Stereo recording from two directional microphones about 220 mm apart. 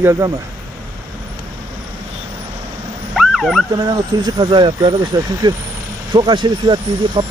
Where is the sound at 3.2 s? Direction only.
Centre (ahead or behind).